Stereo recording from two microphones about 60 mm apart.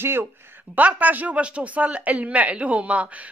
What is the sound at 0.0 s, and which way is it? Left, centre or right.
Speech, right.